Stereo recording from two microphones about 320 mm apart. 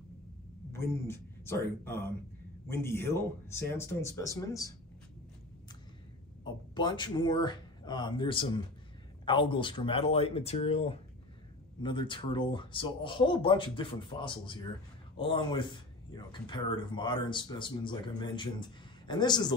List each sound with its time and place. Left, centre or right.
0.7 s speech: centre
6.4 s speech: centre